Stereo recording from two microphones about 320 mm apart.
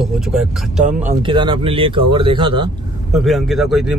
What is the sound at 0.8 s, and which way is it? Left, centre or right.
Speech, centre.